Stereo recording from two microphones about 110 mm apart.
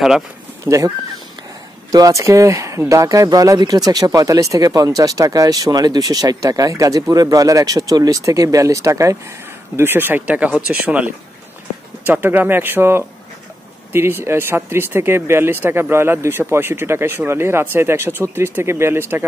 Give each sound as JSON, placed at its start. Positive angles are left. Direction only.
{"t": 0.7, "sound": "speech", "side_deg": -30}
{"t": 12.1, "sound": "speech", "side_deg": -15}